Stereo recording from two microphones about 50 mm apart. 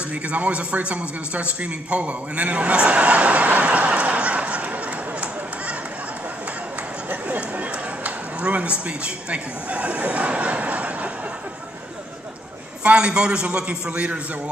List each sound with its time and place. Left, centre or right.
0.1 s a man's voice: right
7.1 s a sound: right
12.8 s a man's voice: centre